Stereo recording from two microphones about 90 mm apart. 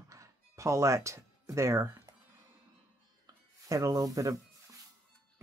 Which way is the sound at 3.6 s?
40° right (ahead or behind).